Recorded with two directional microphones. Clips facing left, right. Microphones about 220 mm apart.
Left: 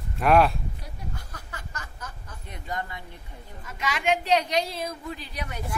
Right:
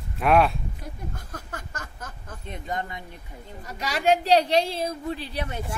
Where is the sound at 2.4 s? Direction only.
25° right (ahead or behind).